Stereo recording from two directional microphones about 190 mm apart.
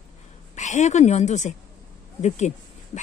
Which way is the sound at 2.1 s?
40° left (ahead or behind).